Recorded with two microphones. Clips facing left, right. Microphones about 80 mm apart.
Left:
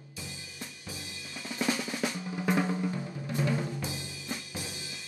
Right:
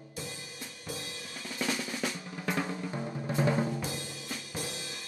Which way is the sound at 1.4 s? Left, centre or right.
Centre.